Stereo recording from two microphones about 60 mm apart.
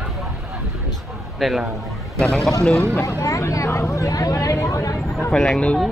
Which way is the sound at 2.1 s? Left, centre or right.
Centre.